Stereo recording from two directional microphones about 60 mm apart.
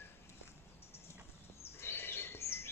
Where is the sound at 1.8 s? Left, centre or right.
Left.